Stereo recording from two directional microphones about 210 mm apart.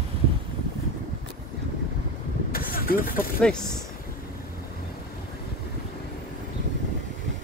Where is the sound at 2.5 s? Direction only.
45° left (ahead or behind).